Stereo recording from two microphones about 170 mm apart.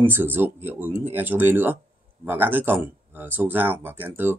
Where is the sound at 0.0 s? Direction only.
10° right (ahead or behind).